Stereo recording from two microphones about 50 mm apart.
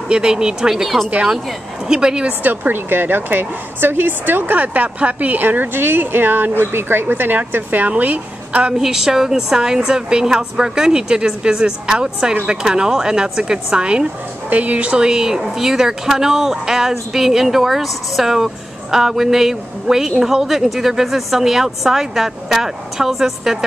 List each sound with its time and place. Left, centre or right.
0.1 s speech: centre
2.4 s a woman's voice: right
8.7 s speech: centre
14.5 s a woman's voice: right
14.9 s speech: centre